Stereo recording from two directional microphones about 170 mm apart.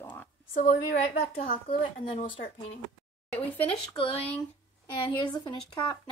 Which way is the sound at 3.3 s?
10° left (ahead or behind).